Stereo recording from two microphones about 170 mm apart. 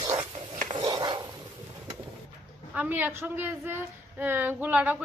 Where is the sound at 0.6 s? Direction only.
25° right (ahead or behind).